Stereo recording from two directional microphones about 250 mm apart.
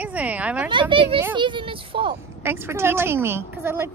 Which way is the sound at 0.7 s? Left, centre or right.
Centre.